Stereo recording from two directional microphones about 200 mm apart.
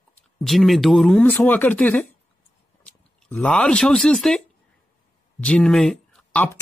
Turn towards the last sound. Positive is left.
turn(degrees=10)  # may be behind; listen again after turning